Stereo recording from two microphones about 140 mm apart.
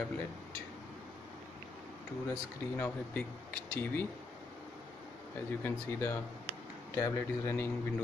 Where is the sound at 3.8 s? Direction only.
15° left (ahead or behind).